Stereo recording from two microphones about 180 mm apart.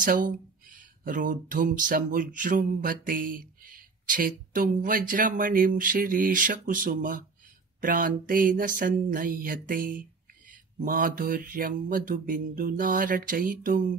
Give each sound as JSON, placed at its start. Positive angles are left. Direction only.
{"t": 0.0, "sound": "speech", "side_deg": -50}